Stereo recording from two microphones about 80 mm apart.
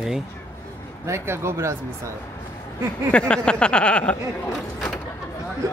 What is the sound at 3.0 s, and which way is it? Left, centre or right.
Speech, centre.